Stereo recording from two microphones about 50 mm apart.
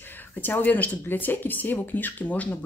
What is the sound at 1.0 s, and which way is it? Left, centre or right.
Speech, left.